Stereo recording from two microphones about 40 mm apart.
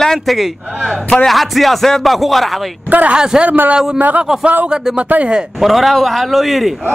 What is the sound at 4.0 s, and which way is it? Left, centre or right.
Speech, right.